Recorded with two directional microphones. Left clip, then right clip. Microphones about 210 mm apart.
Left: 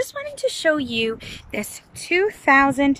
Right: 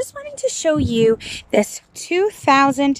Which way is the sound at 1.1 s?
45° right (ahead or behind).